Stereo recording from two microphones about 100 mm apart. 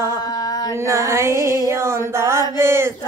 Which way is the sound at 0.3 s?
40° left (ahead or behind).